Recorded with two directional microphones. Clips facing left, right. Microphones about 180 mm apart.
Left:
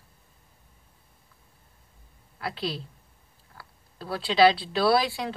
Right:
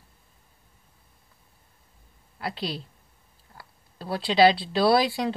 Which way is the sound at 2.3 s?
20° right (ahead or behind).